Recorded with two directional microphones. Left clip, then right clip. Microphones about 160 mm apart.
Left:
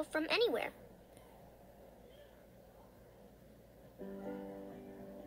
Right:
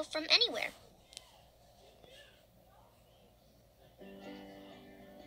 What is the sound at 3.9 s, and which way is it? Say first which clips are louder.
Music: left 4 dB; 30° left (ahead or behind).